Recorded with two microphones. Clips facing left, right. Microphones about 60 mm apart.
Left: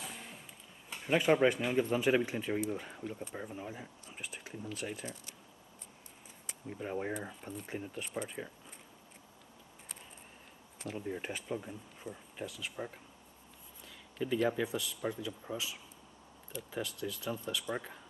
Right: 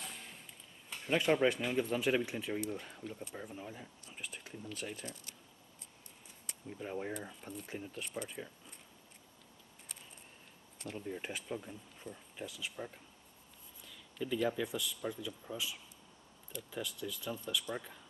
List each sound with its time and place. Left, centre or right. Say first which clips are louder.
0.0 s a sound: left 3 dB; centre
0.8 s speech: left 3 dB; centre
6.8 s speech: left 3 dB; centre
7.2 s speech: left 3 dB; centre
10.8 s speech: left 3 dB; centre
12.7 s speech: left 3 dB; centre